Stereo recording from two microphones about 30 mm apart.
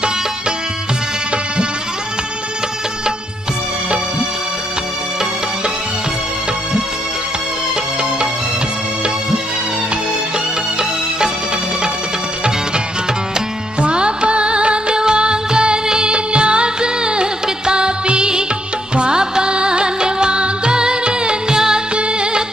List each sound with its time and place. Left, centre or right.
13.7 s music: right
15.0 s music of bollywood: right
18.9 s music: right
21.9 s music: right